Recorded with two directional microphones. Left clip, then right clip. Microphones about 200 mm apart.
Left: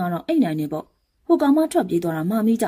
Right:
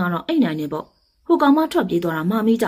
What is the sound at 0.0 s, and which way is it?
Speech, 45° left (ahead or behind).